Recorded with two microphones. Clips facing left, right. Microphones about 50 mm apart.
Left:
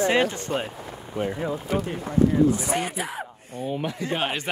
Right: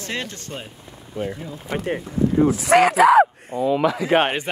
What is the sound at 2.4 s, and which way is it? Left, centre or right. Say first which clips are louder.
Speech: right 8 dB; right.